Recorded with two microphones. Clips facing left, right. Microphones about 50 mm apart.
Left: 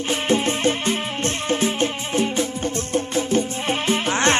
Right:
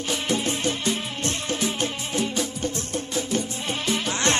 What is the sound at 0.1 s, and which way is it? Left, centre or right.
Music, left.